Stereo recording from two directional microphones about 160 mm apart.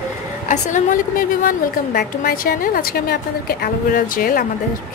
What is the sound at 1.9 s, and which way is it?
A woman's voice, 65° left (ahead or behind).